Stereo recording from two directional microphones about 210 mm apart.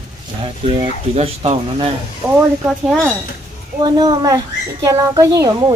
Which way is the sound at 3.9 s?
15° right (ahead or behind).